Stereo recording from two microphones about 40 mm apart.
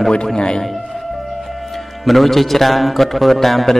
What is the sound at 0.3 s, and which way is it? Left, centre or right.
Speech, centre.